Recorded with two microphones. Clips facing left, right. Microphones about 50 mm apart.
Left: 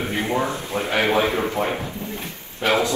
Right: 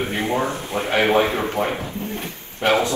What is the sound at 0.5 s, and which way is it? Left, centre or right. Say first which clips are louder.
Speech: right 1 dB; right.